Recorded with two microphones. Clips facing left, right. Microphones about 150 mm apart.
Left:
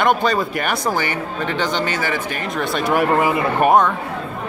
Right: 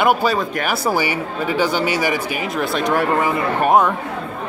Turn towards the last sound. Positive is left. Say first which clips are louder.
# left 1 dB
turn(degrees=10)  # may be behind; listen again after turning